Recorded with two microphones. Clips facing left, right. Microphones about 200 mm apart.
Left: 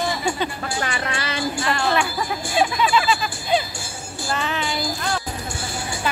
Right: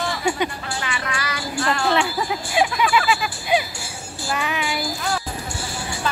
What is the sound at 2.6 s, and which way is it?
Speech, 10° right (ahead or behind).